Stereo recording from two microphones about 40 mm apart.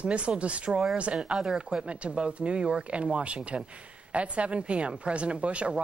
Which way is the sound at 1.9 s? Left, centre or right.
Right.